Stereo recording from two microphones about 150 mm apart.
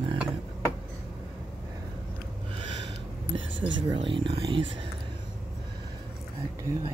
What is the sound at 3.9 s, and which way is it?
Speech, 35° right (ahead or behind).